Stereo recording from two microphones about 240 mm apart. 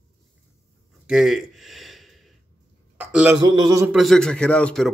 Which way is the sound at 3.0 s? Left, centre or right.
Centre.